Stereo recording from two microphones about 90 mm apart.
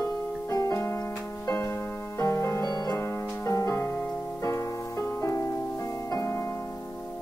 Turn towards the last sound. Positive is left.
turn(degrees=35)  # may be behind; listen again after turning